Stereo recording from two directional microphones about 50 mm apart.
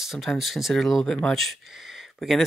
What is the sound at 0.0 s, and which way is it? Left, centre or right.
Speech, centre.